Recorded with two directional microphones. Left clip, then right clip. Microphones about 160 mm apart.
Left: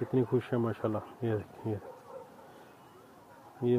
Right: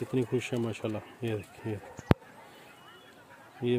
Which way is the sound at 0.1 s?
15° right (ahead or behind).